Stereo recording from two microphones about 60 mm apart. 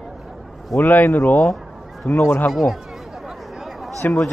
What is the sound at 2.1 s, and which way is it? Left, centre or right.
Speech, left.